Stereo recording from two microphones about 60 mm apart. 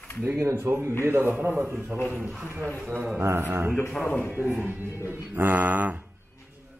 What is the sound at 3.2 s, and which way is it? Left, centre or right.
Speech, right.